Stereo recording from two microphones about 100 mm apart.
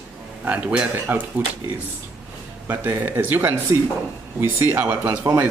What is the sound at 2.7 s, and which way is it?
Speech, 20° right (ahead or behind).